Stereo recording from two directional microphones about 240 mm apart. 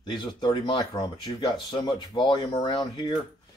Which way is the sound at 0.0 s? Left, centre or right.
Centre.